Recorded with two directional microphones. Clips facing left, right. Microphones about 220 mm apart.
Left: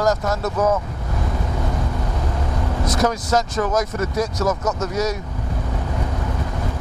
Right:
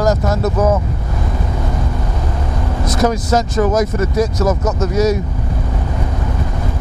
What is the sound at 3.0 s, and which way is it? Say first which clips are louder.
Speech: right 6 dB; 5° right (ahead or behind).